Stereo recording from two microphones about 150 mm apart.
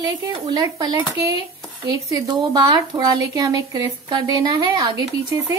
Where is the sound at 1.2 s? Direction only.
25° right (ahead or behind).